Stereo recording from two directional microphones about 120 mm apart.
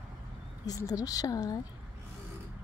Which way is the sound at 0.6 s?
30° left (ahead or behind).